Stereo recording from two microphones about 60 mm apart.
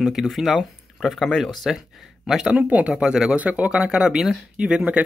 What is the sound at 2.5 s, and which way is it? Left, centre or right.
Speech, right.